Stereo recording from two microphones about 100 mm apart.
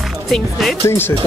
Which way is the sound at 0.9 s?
20° left (ahead or behind).